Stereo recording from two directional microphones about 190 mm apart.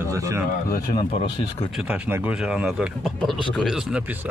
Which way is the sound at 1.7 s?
5° right (ahead or behind).